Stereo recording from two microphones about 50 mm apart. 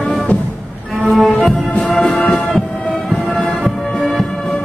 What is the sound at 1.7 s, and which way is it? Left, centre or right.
Music, left.